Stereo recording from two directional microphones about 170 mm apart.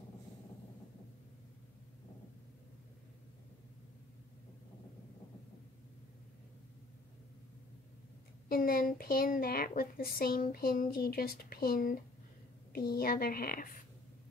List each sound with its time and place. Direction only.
8.5 s a child's voice: 60° left (ahead or behind)